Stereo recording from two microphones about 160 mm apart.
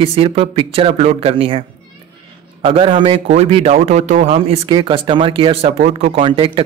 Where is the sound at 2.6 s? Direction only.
35° right (ahead or behind).